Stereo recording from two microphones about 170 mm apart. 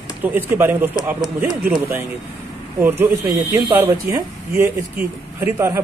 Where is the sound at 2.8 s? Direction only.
10° right (ahead or behind).